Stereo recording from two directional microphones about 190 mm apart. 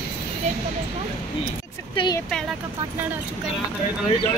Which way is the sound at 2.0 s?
25° left (ahead or behind).